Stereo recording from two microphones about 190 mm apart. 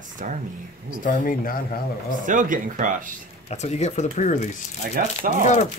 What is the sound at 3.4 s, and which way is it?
Speech, 35° left (ahead or behind).